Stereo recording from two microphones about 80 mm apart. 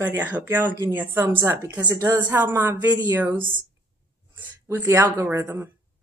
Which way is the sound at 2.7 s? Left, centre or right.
Right.